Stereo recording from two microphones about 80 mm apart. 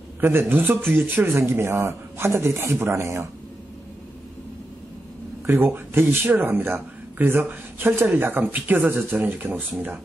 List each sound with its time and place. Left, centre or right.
0.2 s speech: right
5.5 s speech: right